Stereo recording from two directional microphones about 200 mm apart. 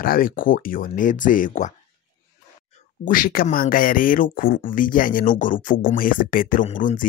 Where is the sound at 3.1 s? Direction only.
45° left (ahead or behind).